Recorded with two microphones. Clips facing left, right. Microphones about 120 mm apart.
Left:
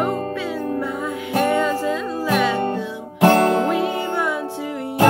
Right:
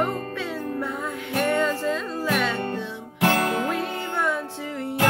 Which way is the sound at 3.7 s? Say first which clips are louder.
Left 6 dB; 10° left (ahead or behind).